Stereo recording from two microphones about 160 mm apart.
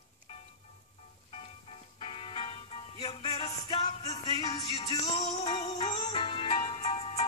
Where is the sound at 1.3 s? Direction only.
35° left (ahead or behind).